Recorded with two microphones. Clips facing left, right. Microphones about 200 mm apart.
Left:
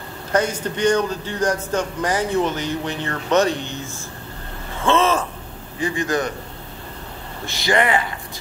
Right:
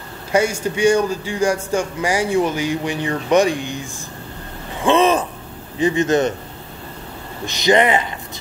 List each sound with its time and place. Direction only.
0.3 s a man's voice: 10° right (ahead or behind)
4.7 s gasp: 15° right (ahead or behind)
5.8 s speech: 20° right (ahead or behind)
7.4 s speech: 20° right (ahead or behind)